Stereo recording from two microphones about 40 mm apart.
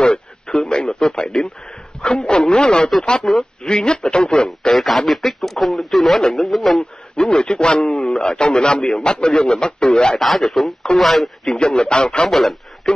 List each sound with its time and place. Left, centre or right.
0.0 s radio: left
0.7 s a man's voice: left
4.7 s speech: centre
7.2 s a man's voice: centre
7.8 s speech: centre
8.2 s a man's voice: left
10.1 s speech: centre
11.5 s a man's voice: centre
12.3 s speech: centre